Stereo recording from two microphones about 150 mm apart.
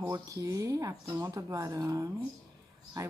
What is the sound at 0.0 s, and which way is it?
Speech, 20° right (ahead or behind).